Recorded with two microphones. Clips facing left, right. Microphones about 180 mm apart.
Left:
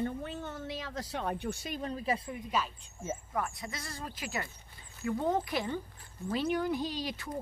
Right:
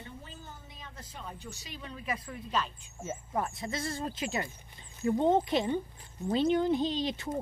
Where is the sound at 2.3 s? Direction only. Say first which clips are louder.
Even; 10° left (ahead or behind).